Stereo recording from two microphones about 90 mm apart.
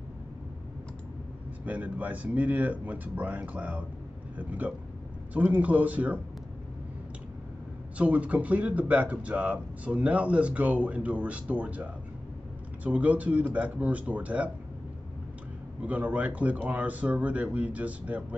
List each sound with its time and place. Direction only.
1.7 s speech: 15° right (ahead or behind)
8.0 s speech: 15° right (ahead or behind)
15.8 s speech: 15° right (ahead or behind)